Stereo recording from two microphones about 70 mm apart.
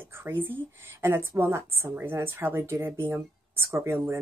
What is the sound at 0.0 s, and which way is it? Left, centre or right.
A woman's voice, right.